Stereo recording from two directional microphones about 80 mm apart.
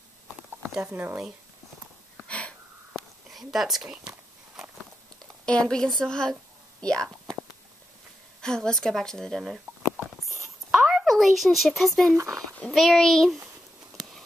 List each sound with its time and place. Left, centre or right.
2.2 s wheeze: centre
3.0 s a sound: centre
5.4 s a woman's voice: centre
8.4 s a woman's voice: centre
9.7 s rodents: right
10.2 s a sound: centre
12.2 s speech: right
12.7 s a child's voice: centre